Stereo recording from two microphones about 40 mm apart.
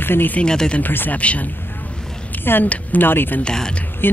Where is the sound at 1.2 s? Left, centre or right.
Left.